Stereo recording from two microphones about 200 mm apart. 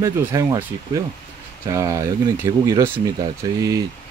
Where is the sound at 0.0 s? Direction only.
15° right (ahead or behind).